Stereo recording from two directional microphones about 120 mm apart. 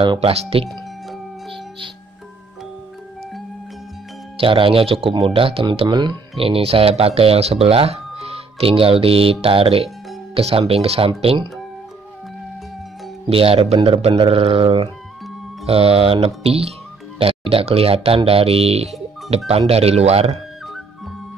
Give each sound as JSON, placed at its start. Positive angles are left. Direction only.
{"t": 0.0, "sound": "speech", "side_deg": -45}
{"t": 0.3, "sound": "speech", "side_deg": -55}
{"t": 4.4, "sound": "speech", "side_deg": -45}
{"t": 6.4, "sound": "speech", "side_deg": -50}
{"t": 13.3, "sound": "speech", "side_deg": -50}